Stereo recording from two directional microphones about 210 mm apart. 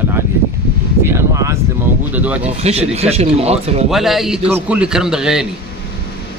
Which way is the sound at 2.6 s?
30° right (ahead or behind).